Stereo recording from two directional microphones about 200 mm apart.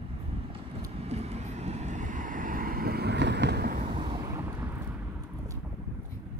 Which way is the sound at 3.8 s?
25° right (ahead or behind).